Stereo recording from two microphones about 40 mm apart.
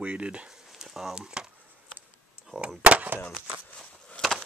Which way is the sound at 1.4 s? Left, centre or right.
Right.